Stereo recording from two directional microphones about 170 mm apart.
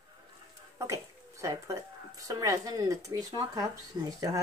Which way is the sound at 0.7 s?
20° right (ahead or behind).